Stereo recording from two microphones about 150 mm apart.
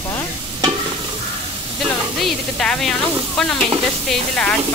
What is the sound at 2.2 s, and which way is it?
Speech, 5° left (ahead or behind).